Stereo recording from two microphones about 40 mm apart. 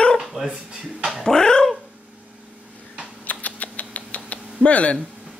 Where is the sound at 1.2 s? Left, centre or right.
Centre.